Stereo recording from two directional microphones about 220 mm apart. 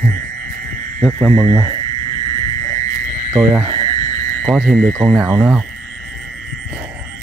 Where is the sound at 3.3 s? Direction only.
5° right (ahead or behind).